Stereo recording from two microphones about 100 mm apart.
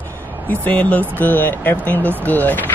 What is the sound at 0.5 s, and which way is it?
Speech, 15° left (ahead or behind).